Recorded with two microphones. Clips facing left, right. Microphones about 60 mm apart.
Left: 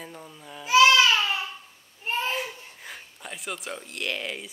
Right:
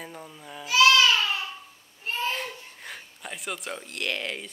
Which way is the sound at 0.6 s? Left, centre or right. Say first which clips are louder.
Left 2 dB; left.